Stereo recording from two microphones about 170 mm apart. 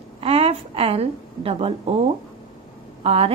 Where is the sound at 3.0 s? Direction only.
35° right (ahead or behind).